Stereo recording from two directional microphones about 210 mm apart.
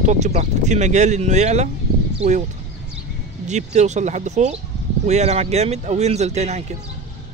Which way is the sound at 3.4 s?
35° right (ahead or behind).